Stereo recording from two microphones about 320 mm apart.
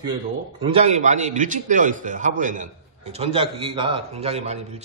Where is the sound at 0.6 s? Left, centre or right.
Centre.